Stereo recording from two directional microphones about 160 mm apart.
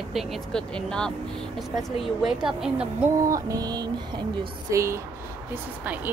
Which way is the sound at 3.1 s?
20° right (ahead or behind).